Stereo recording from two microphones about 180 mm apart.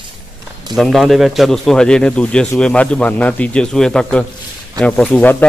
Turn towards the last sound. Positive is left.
turn(degrees=10)  # may be behind; listen again after turning